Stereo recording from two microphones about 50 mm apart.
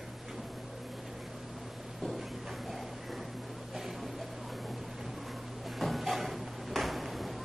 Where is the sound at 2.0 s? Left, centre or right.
Centre.